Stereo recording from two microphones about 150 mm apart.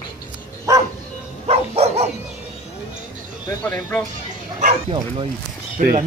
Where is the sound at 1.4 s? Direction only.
45° right (ahead or behind).